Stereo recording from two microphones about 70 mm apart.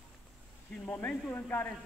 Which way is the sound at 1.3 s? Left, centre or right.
Left.